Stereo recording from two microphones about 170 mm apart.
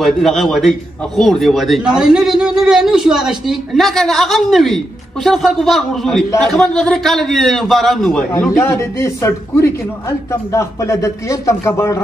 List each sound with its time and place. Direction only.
0.0 s a man's voice: centre (ahead or behind); by 12.0 s 15° left (ahead or behind)